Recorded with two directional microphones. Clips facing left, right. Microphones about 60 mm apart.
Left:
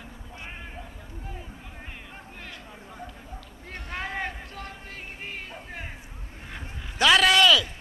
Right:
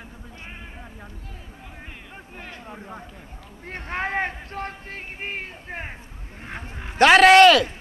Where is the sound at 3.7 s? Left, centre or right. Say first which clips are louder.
Right 6 dB; right.